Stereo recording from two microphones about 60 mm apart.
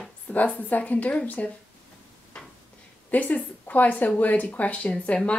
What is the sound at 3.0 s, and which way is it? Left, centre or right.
Speech, left.